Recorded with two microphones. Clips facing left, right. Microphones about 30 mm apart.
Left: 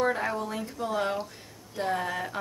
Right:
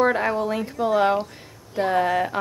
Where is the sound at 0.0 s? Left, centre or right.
Right.